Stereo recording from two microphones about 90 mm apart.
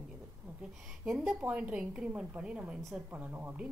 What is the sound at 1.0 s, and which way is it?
A woman's voice, 5° right (ahead or behind).